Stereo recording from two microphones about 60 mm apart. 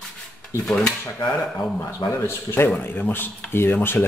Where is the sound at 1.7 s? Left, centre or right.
Left.